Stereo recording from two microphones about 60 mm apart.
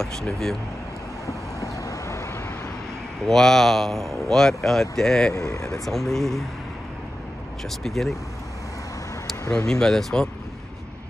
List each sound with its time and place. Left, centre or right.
0.0 s speech: centre
1.2 s vehicle: left
3.3 s speech: centre
5.3 s speech: left
5.9 s speech: centre
7.8 s speech: centre
9.7 s speech: centre